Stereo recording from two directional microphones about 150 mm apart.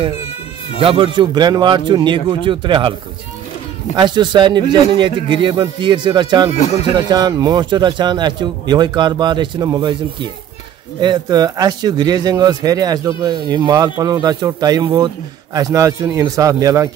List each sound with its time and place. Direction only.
0.7 s a man's voice: 35° right (ahead or behind)
3.9 s a man's voice: 30° right (ahead or behind)
6.6 s speech: 50° left (ahead or behind)
7.1 s speech: 25° right (ahead or behind)
11.0 s speech: 30° right (ahead or behind)